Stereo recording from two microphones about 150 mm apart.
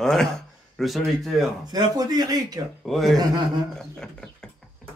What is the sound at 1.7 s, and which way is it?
Speech, 25° right (ahead or behind).